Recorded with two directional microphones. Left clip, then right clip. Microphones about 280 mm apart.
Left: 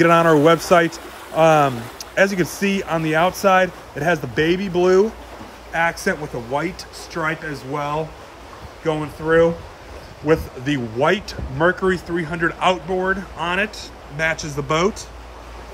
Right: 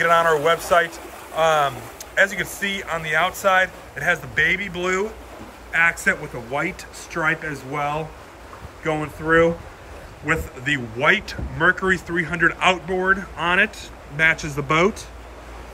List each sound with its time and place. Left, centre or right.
0.0 s a man's voice: left; by 15.0 s centre